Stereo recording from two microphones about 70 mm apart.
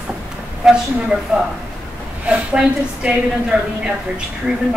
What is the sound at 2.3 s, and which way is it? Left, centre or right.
A woman's voice, centre.